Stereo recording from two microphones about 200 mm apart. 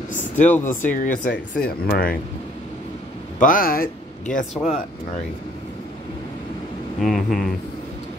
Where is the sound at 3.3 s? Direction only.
45° left (ahead or behind).